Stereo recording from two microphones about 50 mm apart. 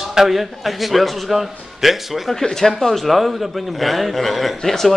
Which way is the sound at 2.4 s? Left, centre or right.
Centre.